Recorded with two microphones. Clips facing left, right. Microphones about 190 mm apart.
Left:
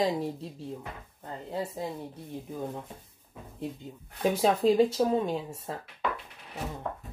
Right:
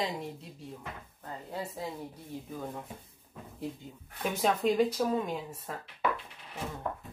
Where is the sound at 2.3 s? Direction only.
20° left (ahead or behind).